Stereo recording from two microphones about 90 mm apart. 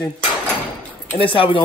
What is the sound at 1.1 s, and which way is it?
Speech, 75° left (ahead or behind).